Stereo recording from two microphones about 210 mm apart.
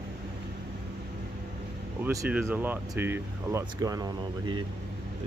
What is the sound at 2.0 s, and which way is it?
Speech, 10° right (ahead or behind).